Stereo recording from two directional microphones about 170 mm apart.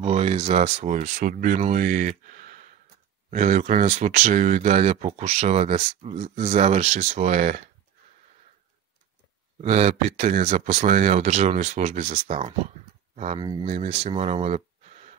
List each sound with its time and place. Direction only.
0.0 s speech: 35° right (ahead or behind)
9.6 s speech: 40° right (ahead or behind)
13.4 s speech: 25° right (ahead or behind)
13.7 s speech: 40° right (ahead or behind)